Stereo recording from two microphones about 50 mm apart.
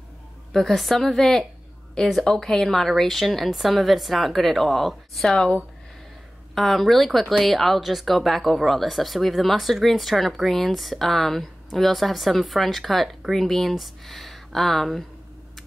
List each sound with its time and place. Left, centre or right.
0.5 s a woman's voice: centre